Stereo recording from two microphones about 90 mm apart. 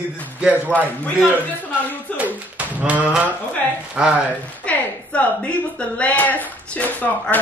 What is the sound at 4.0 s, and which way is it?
Speech, 10° right (ahead or behind).